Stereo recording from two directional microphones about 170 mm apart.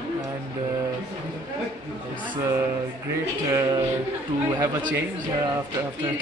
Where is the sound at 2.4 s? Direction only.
15° right (ahead or behind).